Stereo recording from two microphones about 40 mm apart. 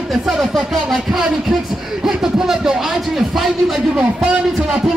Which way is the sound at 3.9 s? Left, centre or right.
Right.